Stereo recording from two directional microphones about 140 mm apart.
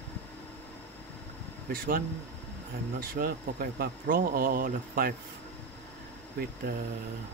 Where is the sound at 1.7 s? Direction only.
90° right.